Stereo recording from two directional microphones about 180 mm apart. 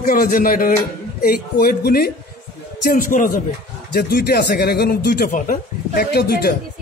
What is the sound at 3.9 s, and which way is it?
Speech, 60° left (ahead or behind).